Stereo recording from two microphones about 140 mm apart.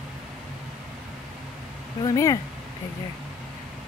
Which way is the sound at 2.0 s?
25° left (ahead or behind).